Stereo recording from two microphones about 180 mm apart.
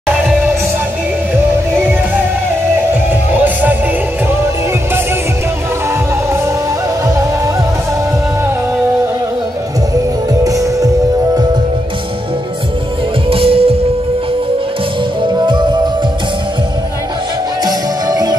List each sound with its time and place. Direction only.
3.3 s music: 10° right (ahead or behind)
10.4 s music: 20° right (ahead or behind)
13.3 s music: 30° right (ahead or behind)
15.3 s music: 25° right (ahead or behind)
17.6 s music: 20° right (ahead or behind)